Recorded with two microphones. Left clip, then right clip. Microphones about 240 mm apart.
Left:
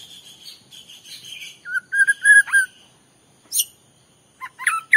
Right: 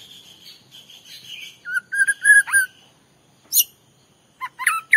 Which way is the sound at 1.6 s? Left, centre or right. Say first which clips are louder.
Left 2 dB; centre.